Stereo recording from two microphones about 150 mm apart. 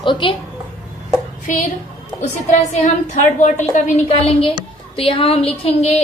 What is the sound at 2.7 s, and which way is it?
A woman's voice, 55° left (ahead or behind).